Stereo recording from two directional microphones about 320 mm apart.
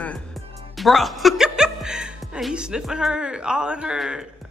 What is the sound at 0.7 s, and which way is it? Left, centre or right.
Speech, centre.